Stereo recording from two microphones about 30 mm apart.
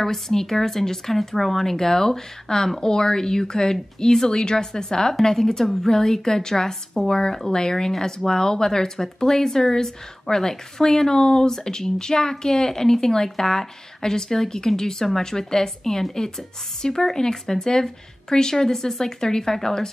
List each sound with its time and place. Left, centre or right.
0.0 s speech: centre